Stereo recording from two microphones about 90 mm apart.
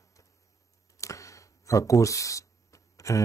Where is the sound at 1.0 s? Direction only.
35° left (ahead or behind).